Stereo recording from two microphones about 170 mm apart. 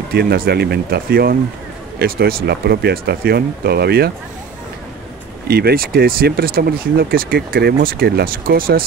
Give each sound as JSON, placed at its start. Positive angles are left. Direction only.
{"t": 0.1, "sound": "speech", "side_deg": -70}
{"t": 5.5, "sound": "speech", "side_deg": -65}